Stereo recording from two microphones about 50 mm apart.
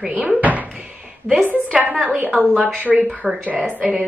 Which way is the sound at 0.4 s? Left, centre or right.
Right.